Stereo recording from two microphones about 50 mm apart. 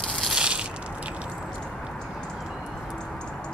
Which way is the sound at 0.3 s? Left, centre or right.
Centre.